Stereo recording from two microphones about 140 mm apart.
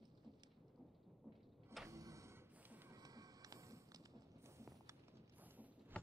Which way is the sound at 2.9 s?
25° right (ahead or behind).